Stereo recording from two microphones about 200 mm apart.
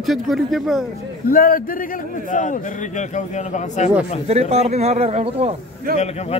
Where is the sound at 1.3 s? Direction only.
45° left (ahead or behind).